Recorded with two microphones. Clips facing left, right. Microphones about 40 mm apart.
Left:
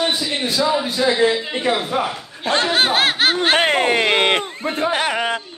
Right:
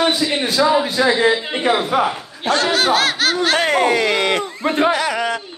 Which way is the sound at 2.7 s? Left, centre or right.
Left.